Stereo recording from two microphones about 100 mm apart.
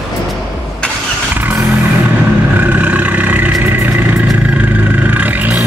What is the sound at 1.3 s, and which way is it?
Vehicle, 20° right (ahead or behind).